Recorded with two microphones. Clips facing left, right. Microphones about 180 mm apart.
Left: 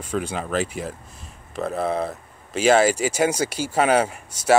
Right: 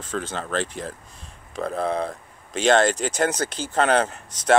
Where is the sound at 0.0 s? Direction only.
10° left (ahead or behind).